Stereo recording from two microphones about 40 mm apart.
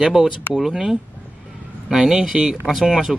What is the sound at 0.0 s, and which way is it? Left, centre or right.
Speech, centre.